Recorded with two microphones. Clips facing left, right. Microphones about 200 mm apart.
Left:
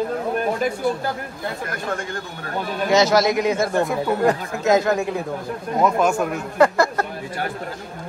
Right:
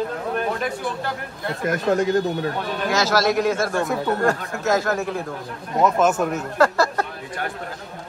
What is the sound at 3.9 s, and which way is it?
Speech, centre (ahead or behind).